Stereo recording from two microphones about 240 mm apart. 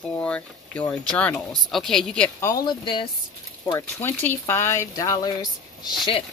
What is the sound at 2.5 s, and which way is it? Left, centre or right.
Speech, centre.